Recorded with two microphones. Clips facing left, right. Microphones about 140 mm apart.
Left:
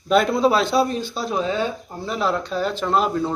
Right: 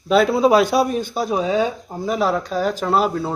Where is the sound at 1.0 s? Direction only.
50° right (ahead or behind).